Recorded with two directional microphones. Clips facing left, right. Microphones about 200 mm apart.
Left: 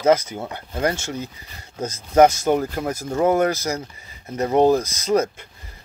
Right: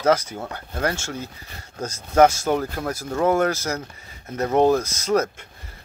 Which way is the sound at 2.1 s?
15° left (ahead or behind).